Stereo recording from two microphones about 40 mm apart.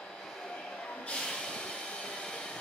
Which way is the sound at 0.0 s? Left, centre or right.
Centre.